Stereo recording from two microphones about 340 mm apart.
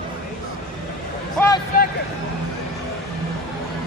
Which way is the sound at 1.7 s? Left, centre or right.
Left.